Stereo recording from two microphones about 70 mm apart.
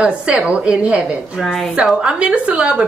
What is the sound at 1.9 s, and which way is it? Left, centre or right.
Speech, centre.